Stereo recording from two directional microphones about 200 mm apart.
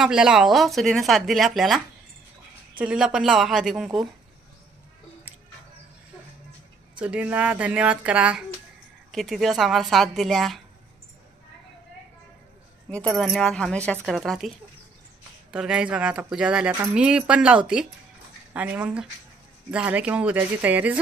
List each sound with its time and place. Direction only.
0.0 s speech: 5° right (ahead or behind)
2.8 s speech: 5° right (ahead or behind)
7.0 s speech: 5° right (ahead or behind)
12.9 s speech: centre (ahead or behind)
15.5 s speech: 5° right (ahead or behind)